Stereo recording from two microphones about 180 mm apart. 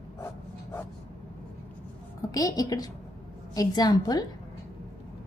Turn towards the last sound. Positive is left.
turn(degrees=20)  # may be behind; listen again after turning